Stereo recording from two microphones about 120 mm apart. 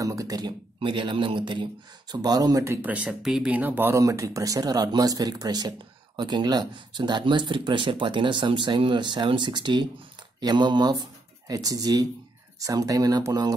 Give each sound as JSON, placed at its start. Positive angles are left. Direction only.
{"t": 0.0, "sound": "a man's voice", "side_deg": -25}
{"t": 0.7, "sound": "speech", "side_deg": -45}